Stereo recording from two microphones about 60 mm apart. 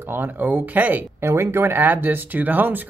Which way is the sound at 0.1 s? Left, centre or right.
Right.